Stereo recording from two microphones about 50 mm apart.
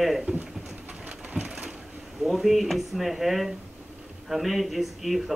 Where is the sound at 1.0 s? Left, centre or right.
Right.